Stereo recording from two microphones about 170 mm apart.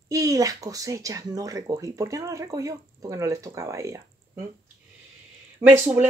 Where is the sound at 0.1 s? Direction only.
20° right (ahead or behind).